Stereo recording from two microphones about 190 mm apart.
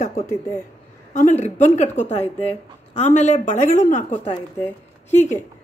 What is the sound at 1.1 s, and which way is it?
A woman's voice, 40° left (ahead or behind).